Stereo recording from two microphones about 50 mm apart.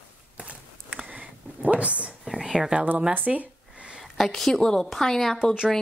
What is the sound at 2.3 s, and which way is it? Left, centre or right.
Speech, centre.